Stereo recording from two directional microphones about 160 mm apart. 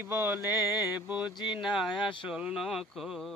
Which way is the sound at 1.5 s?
5° right (ahead or behind).